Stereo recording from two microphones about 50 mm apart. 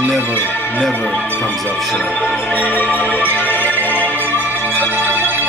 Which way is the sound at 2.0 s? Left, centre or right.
Left.